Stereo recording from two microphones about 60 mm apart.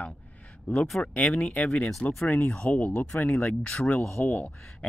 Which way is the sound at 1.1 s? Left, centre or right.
Left.